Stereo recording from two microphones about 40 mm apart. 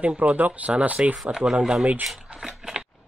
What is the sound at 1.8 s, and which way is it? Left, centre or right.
Speech, right.